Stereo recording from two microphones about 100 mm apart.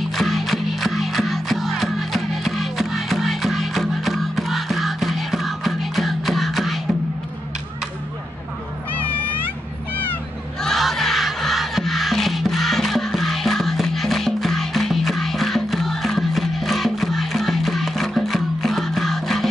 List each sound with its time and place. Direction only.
0.1 s music: centre (ahead or behind)
10.6 s music: centre (ahead or behind)